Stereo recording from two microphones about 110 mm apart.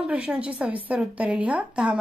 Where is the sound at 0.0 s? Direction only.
10° right (ahead or behind).